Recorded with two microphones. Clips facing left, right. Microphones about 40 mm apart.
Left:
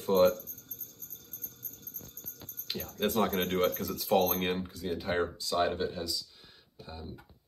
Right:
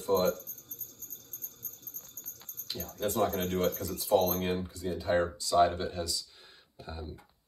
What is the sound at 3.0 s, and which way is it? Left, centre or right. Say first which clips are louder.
Speech: left 1 dB; left.